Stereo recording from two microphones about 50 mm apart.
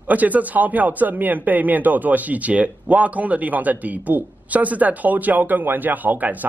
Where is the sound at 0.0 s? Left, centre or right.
Right.